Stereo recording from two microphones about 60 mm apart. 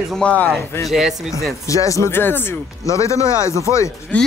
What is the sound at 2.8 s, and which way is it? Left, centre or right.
Speech, left.